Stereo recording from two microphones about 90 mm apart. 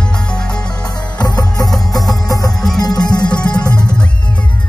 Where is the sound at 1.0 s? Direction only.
45° left (ahead or behind).